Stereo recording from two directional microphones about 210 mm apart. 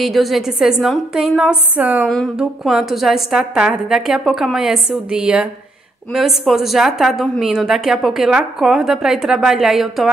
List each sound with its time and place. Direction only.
0.0 s a woman's voice: centre (ahead or behind)